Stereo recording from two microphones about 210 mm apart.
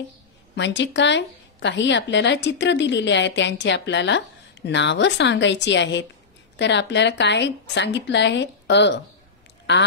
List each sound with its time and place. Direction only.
0.6 s a woman's voice: 60° left (ahead or behind)